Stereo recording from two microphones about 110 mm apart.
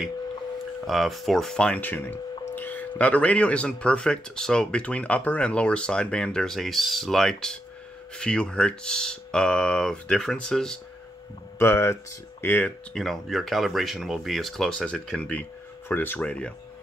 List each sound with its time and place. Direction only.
0.7 s speech: centre (ahead or behind)
11.5 s speech: 20° left (ahead or behind)
12.9 s speech: centre (ahead or behind)